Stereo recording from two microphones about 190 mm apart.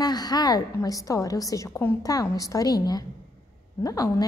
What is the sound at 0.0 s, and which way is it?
A woman's voice, 20° left (ahead or behind).